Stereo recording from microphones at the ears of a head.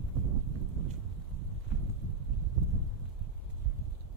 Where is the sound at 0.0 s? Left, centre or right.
Right.